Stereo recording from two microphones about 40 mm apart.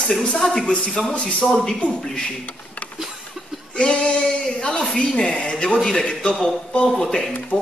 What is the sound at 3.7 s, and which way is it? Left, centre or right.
Speech, left.